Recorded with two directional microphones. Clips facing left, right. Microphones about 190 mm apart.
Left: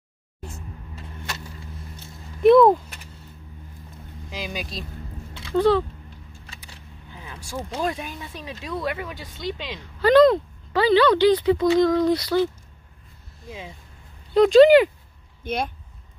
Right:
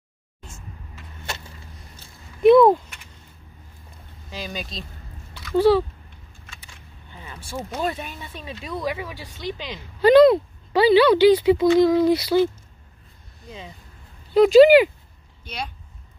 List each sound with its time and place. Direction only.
0.5 s vehicle: 35° left (ahead or behind)
2.4 s a sound: centre (ahead or behind)
4.3 s speech: 5° left (ahead or behind)
5.5 s speech: 10° right (ahead or behind)
6.4 s a sound: 35° left (ahead or behind)
7.2 s vehicle: centre (ahead or behind)
7.8 s speech: centre (ahead or behind)
13.4 s speech: centre (ahead or behind)
15.4 s speech: 50° left (ahead or behind)